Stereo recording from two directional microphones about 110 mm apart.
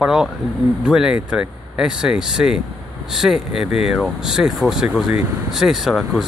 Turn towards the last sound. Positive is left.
turn(degrees=0)  # may be behind; listen again after turning